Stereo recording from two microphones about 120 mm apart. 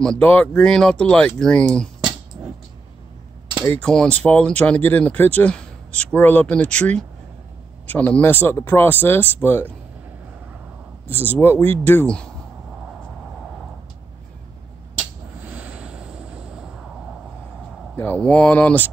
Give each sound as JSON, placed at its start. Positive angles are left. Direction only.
{"t": 0.0, "sound": "speech", "side_deg": 10}
{"t": 3.6, "sound": "speech", "side_deg": 10}
{"t": 11.3, "sound": "speech", "side_deg": 20}
{"t": 15.5, "sound": "vehicle", "side_deg": -10}
{"t": 17.9, "sound": "speech", "side_deg": 20}
{"t": 18.2, "sound": "speech", "side_deg": 10}